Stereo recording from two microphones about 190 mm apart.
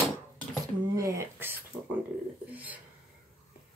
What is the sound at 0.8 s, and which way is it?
Speech, 20° right (ahead or behind).